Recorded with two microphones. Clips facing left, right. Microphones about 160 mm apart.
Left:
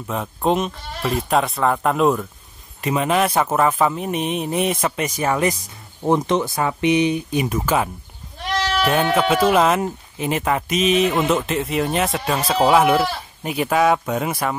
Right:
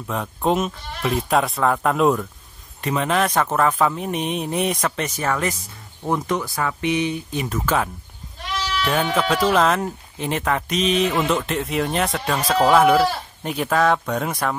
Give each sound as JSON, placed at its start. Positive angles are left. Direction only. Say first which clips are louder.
{"t": 0.0, "sound": "speech", "louder": "left 1 dB", "side_deg": 0}
{"t": 9.1, "sound": "speech", "louder": "left 2 dB", "side_deg": 5}